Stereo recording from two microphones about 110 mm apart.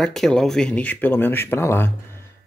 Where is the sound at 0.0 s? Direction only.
5° left (ahead or behind).